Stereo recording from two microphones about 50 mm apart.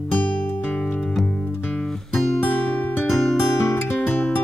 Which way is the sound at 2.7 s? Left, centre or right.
Left.